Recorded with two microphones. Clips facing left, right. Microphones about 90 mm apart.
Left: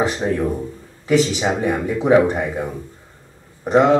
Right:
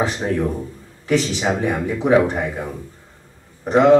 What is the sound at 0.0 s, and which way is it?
A man's voice, 15° left (ahead or behind).